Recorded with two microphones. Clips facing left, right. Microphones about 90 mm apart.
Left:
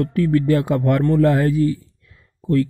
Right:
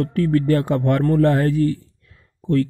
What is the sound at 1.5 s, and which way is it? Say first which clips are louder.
Speech: left 1 dB; 60° right (ahead or behind).